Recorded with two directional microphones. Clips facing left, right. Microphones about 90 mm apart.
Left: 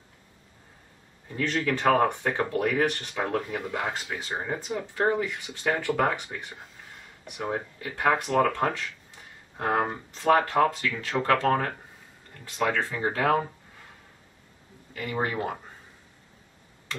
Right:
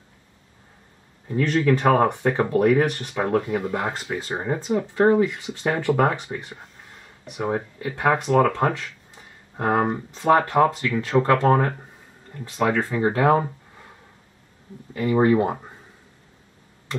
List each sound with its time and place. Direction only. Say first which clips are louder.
1.3 s speech: right 7 dB; 15° right (ahead or behind)
3.4 s speech: right 6 dB; 5° right (ahead or behind)
4.3 s speech: right 7 dB; 25° right (ahead or behind)
9.8 s speech: right 5 dB; 15° right (ahead or behind)
15.0 s speech: right 11 dB; 20° right (ahead or behind)